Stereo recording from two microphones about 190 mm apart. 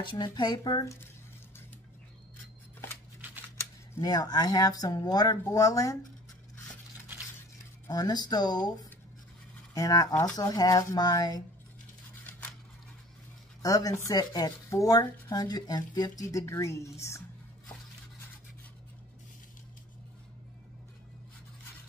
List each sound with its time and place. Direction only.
0.0 s speech: 25° left (ahead or behind)
3.9 s speech: 20° left (ahead or behind)
7.9 s speech: 20° left (ahead or behind)
9.8 s speech: 20° left (ahead or behind)
12.3 s scissors: 5° left (ahead or behind)
13.6 s speech: 20° left (ahead or behind)